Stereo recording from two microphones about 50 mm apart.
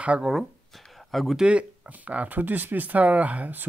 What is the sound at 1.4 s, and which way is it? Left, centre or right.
Speech, right.